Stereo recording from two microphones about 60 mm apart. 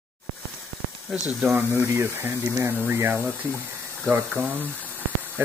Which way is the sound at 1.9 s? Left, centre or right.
Right.